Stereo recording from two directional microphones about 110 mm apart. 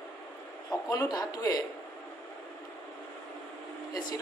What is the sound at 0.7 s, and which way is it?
Speech, 35° left (ahead or behind).